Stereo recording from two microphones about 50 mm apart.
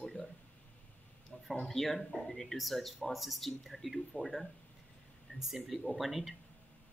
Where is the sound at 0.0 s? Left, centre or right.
Centre.